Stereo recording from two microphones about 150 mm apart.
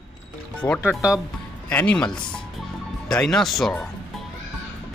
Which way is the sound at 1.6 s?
10° left (ahead or behind).